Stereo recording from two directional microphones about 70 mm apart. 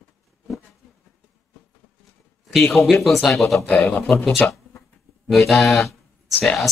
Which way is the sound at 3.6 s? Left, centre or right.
Left.